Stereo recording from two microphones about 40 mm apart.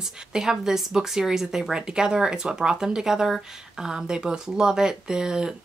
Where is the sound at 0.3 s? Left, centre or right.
Centre.